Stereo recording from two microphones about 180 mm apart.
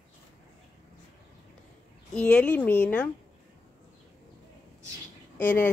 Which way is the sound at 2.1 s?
5° left (ahead or behind).